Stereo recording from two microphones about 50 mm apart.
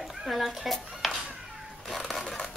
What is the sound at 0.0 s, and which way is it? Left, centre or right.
A child's voice, centre.